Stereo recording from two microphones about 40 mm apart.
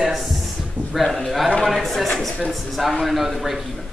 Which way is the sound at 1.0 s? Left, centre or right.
Centre.